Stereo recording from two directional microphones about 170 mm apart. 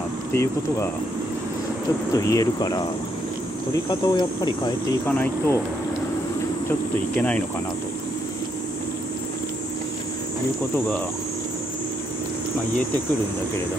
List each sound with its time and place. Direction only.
0.3 s speech: 15° left (ahead or behind)
2.1 s speech: 20° left (ahead or behind)
3.9 s speech: 25° left (ahead or behind)
5.0 s speech: 10° left (ahead or behind)
7.2 s speech: 10° left (ahead or behind)